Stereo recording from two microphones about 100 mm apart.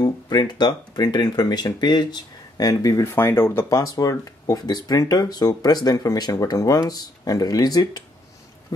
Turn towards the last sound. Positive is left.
turn(degrees=40)  # may be behind; listen again after turning